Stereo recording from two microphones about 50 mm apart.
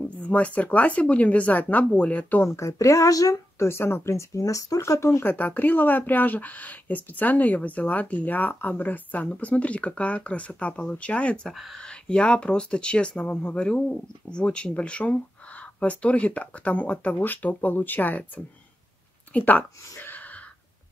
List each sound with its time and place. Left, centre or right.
0.0 s speech: left
2.4 s speech: left
3.5 s speech: left
5.2 s speech: left
11.4 s speech: centre
11.8 s speech: centre